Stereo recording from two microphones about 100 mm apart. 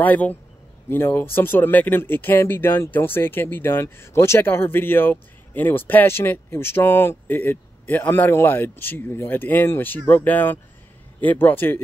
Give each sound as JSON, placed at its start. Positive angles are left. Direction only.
{"t": 0.0, "sound": "speech", "side_deg": 15}